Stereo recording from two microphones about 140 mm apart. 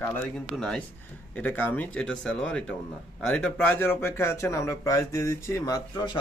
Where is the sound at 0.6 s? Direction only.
5° left (ahead or behind).